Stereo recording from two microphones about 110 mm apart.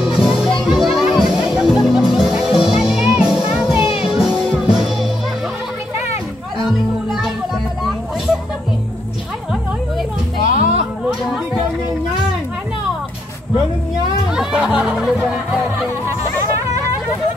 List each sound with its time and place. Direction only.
0.0 s music: 5° right (ahead or behind)
0.4 s children playing: centre (ahead or behind)
1.3 s music: centre (ahead or behind)
6.6 s music: centre (ahead or behind)
10.6 s a sound: 75° right (ahead or behind)
14.3 s music: 5° right (ahead or behind)